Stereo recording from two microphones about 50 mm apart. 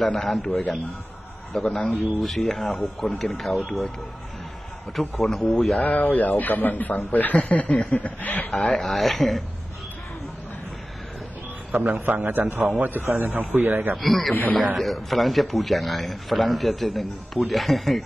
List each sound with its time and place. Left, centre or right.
0.1 s a man's voice: centre
1.5 s a man's voice: centre
4.9 s a man's voice: centre
5.8 s speech: left
6.0 s speech: left
8.7 s a man's voice: centre
11.7 s a man's voice: right
12.3 s a man's voice: right
14.0 s a man's voice: centre